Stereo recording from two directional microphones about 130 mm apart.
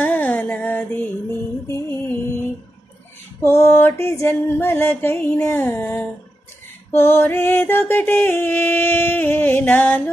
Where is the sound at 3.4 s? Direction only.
20° left (ahead or behind).